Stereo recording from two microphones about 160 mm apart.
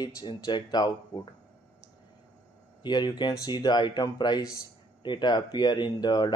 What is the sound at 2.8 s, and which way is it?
Speech, 25° left (ahead or behind).